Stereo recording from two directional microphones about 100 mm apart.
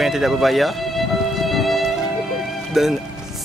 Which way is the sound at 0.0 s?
5° right (ahead or behind).